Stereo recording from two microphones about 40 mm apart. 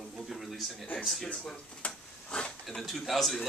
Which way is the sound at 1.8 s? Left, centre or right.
Left.